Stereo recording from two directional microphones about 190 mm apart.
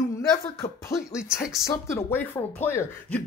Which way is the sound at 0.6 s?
15° left (ahead or behind).